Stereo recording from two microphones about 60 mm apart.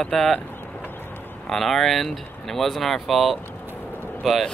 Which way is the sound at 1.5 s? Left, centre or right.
Centre.